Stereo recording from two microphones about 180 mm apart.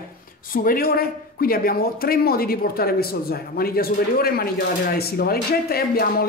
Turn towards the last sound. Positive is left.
turn(degrees=55)  # may be behind; listen again after turning